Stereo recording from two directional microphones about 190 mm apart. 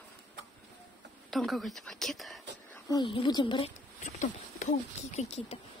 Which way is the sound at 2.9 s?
25° left (ahead or behind).